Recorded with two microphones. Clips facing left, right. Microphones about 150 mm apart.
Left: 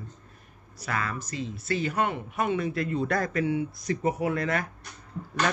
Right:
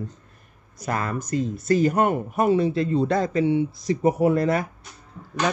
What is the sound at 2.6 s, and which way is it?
Speech, 30° right (ahead or behind).